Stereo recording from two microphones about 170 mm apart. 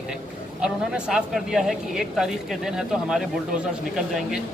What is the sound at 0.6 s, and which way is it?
Speech, 5° right (ahead or behind).